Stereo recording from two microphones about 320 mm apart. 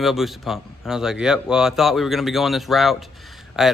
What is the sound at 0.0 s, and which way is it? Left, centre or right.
Speech, centre.